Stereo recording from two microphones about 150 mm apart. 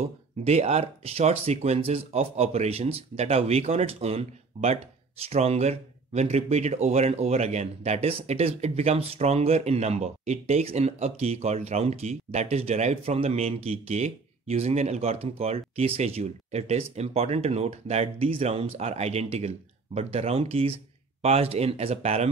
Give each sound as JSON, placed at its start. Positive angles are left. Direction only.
{"t": 0.4, "sound": "speech", "side_deg": -45}